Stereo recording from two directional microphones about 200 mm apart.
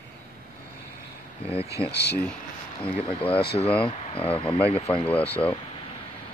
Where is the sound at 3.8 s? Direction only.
30° left (ahead or behind).